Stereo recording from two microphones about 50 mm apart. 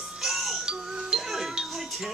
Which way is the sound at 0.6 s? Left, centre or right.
Centre.